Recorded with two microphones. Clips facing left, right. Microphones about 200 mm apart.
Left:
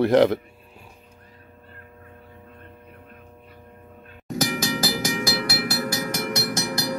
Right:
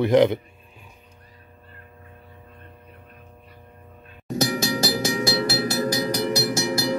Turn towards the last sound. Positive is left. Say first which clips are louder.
# right 3 dB
turn(degrees=-25)  # may be behind; listen again after turning